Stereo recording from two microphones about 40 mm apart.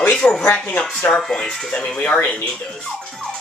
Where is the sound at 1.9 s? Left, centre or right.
Left.